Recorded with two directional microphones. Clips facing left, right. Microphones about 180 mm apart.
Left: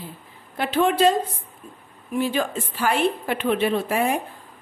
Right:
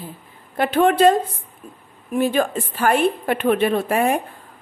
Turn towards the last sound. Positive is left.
turn(degrees=-50)  # may be behind; listen again after turning